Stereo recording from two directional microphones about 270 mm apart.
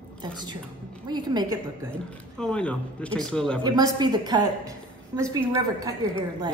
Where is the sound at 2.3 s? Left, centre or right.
Centre.